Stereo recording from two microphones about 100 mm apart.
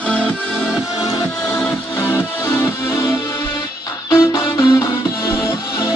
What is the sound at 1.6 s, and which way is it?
Music, 25° left (ahead or behind).